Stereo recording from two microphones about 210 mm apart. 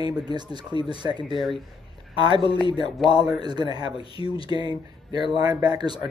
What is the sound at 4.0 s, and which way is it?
Speech, 25° left (ahead or behind).